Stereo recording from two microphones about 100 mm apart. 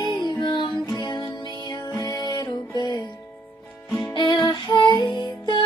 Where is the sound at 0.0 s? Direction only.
50° left (ahead or behind).